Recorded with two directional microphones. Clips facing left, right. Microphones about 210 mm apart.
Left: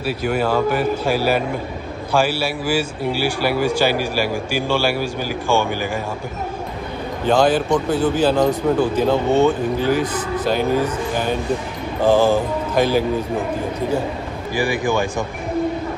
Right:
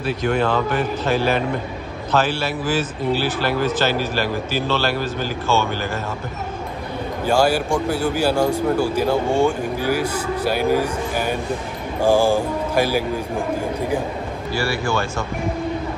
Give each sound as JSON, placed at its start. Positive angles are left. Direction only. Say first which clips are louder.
{"t": 0.0, "sound": "a man's voice", "louder": "even", "side_deg": 5}
{"t": 7.2, "sound": "speech", "louder": "left 2 dB", "side_deg": -10}
{"t": 14.5, "sound": "a man's voice", "louder": "left 3 dB", "side_deg": 15}